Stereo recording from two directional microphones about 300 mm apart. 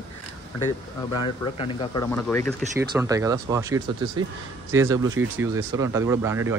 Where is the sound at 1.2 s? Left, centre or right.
Centre.